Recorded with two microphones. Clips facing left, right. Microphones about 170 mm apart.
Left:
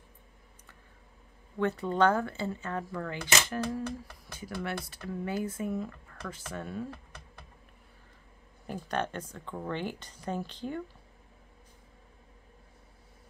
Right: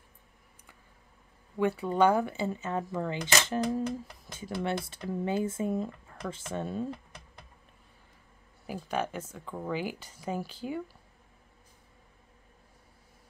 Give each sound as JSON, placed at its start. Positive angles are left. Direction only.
{"t": 1.6, "sound": "speech", "side_deg": -10}
{"t": 8.6, "sound": "speech", "side_deg": -5}